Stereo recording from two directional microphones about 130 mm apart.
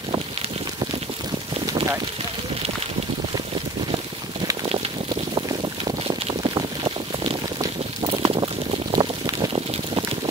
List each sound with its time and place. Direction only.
6.4 s boat: 35° right (ahead or behind)
8.0 s vehicle: 35° right (ahead or behind)
8.9 s a sound: 30° right (ahead or behind)